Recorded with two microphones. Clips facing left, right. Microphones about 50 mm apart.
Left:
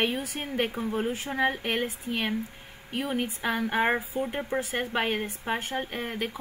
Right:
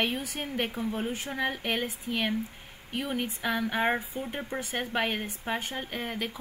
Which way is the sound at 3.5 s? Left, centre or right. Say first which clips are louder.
Left 3 dB; left.